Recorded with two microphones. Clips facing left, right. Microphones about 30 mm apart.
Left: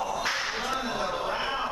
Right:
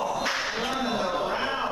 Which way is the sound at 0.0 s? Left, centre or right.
Centre.